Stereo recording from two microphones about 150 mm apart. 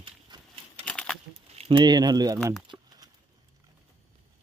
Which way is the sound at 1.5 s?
40° right (ahead or behind).